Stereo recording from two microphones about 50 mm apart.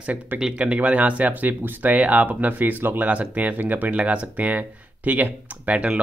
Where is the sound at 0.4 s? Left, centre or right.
Right.